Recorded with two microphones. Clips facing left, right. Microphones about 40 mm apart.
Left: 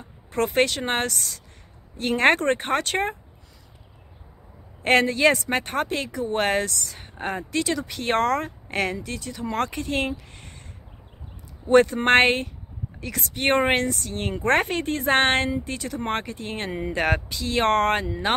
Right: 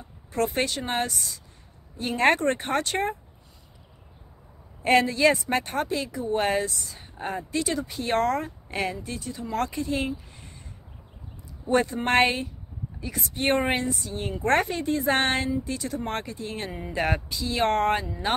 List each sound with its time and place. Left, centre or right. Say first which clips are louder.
0.3 s speech: left 4 dB; left
4.8 s speech: left 1 dB; left
11.6 s speech: left 6 dB; left
14.4 s speech: left 2 dB; left